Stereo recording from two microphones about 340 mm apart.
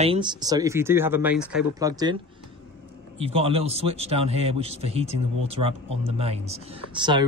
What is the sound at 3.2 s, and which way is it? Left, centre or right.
Speech, centre.